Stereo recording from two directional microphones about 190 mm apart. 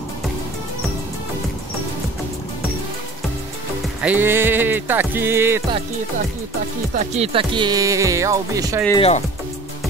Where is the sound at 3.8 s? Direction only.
10° right (ahead or behind).